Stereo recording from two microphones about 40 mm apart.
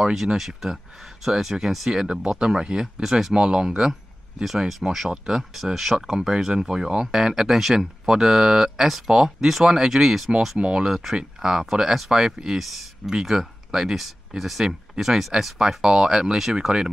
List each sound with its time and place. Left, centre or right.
0.0 s speech: centre
3.3 s speech: centre
10.6 s speech: centre